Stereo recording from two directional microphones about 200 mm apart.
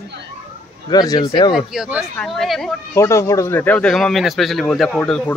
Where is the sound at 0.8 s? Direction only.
20° left (ahead or behind).